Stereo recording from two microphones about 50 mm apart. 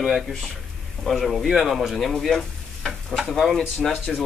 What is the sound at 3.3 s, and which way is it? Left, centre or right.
Speech, centre.